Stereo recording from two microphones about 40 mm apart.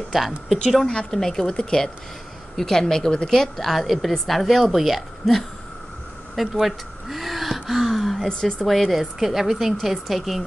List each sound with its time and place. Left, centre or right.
0.8 s speech: centre
3.5 s a woman's voice: centre
6.3 s gasp: centre
8.3 s a woman's voice: left
8.6 s a woman's voice: centre